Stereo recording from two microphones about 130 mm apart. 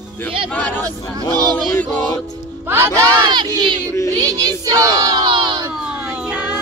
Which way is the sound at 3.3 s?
35° right (ahead or behind).